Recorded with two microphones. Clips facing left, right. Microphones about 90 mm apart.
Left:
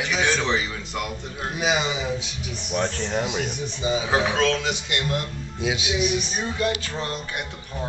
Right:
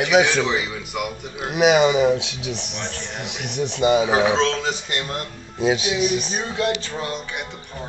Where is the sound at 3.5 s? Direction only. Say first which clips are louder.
Right 7 dB; 70° right (ahead or behind).